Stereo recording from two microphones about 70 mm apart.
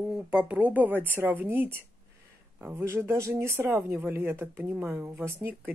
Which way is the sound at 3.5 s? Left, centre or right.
Right.